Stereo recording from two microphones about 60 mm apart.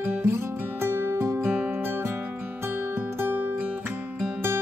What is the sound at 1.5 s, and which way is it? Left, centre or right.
Music, right.